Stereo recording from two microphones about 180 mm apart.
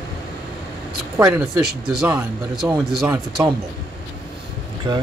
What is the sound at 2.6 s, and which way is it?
Speech, 15° right (ahead or behind).